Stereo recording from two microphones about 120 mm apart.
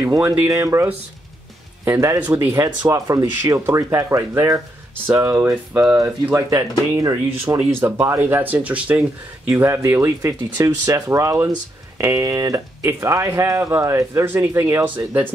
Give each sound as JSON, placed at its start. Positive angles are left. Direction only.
{"t": 0.0, "sound": "speech", "side_deg": -25}
{"t": 1.9, "sound": "speech", "side_deg": -25}
{"t": 5.9, "sound": "speech", "side_deg": -25}
{"t": 9.5, "sound": "speech", "side_deg": -25}